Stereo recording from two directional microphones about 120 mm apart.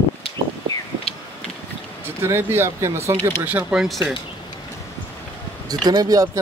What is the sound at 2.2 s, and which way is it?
Speech, 20° right (ahead or behind).